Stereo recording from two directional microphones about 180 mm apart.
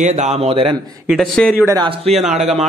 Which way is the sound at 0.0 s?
40° right (ahead or behind).